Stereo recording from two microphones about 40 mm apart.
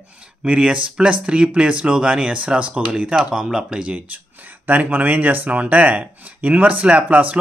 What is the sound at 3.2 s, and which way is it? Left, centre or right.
Speech, centre.